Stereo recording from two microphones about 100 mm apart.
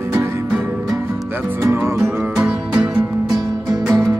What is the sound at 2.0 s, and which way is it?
Music, 5° right (ahead or behind).